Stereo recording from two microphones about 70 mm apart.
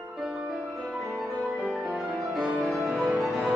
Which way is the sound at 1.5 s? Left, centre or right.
Right.